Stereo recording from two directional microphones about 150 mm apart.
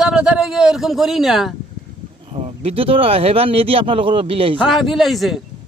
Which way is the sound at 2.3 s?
40° right (ahead or behind).